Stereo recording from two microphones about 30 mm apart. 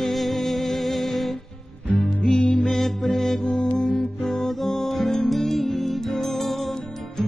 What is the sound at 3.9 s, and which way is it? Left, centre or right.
Music, centre.